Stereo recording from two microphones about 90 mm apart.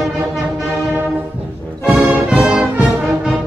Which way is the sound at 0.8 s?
20° right (ahead or behind).